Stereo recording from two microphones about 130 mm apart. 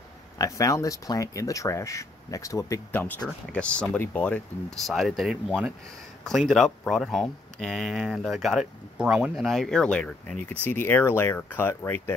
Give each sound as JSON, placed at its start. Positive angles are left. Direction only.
{"t": 0.4, "sound": "speech", "side_deg": 25}
{"t": 4.8, "sound": "speech", "side_deg": 0}